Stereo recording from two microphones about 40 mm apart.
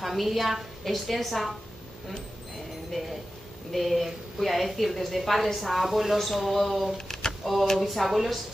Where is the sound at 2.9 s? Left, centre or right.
Centre.